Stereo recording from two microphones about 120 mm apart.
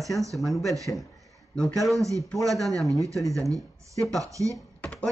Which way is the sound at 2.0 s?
25° right (ahead or behind).